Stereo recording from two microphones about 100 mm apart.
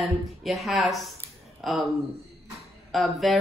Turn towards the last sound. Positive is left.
turn(degrees=0)  # may be behind; listen again after turning